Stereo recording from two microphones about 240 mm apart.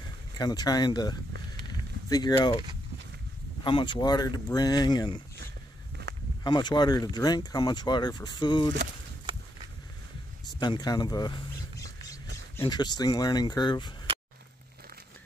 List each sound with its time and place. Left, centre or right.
0.4 s speech: centre
3.6 s speech: centre
6.0 s walk: right
6.4 s speech: centre
10.6 s a sound: centre
12.5 s speech: centre